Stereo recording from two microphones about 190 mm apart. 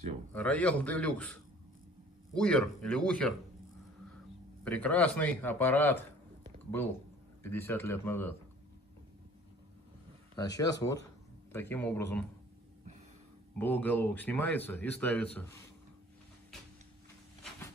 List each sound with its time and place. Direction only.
0.3 s a man's voice: 10° left (ahead or behind)
2.3 s a man's voice: 5° left (ahead or behind)
4.6 s a man's voice: 5° left (ahead or behind)
7.4 s a man's voice: 10° left (ahead or behind)
10.3 s a man's voice: 20° left (ahead or behind)
13.6 s a man's voice: 10° left (ahead or behind)